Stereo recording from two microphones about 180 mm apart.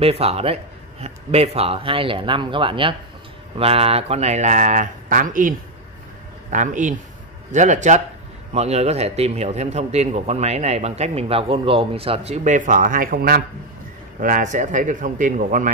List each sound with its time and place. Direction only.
0.0 s a man's voice: 35° right (ahead or behind)
6.5 s a man's voice: 45° right (ahead or behind)